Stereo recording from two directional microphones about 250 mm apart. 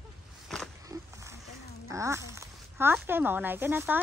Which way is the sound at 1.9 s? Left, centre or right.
Centre.